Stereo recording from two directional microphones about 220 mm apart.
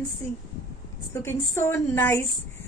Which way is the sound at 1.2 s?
10° left (ahead or behind).